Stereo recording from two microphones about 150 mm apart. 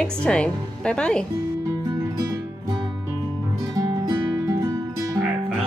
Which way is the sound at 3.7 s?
25° right (ahead or behind).